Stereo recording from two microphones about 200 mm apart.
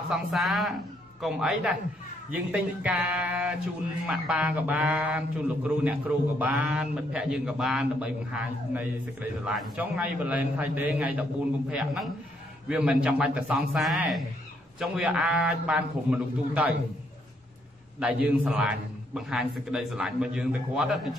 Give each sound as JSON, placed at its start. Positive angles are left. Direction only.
{"t": 0.1, "sound": "a man's voice", "side_deg": 0}
{"t": 17.9, "sound": "a man's voice", "side_deg": -5}